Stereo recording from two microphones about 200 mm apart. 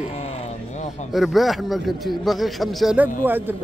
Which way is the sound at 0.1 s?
30° left (ahead or behind).